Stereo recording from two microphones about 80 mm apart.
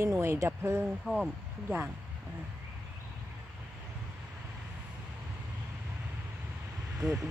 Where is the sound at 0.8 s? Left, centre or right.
Centre.